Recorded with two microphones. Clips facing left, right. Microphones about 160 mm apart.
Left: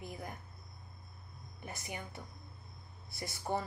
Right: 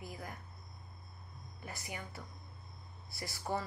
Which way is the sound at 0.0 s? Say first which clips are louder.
Left 2 dB; 25° left (ahead or behind).